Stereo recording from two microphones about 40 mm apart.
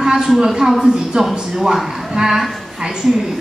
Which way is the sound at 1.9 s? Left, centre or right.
Centre.